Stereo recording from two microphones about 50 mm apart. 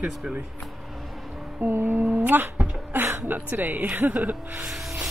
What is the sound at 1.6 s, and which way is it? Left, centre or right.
Speech, right.